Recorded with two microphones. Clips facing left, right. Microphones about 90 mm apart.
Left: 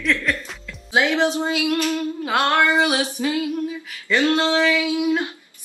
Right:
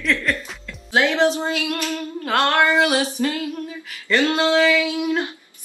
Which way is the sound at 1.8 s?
20° left (ahead or behind).